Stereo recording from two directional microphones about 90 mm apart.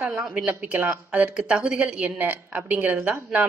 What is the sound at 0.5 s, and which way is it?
Speech, 20° right (ahead or behind).